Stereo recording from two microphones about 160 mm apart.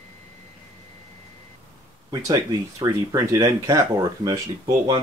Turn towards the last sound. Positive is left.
turn(degrees=-20)  # may be behind; listen again after turning